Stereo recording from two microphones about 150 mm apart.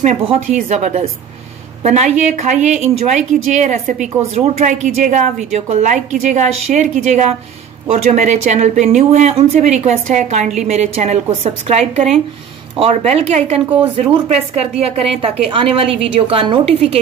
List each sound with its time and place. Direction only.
0.0 s a woman's voice: 50° right (ahead or behind)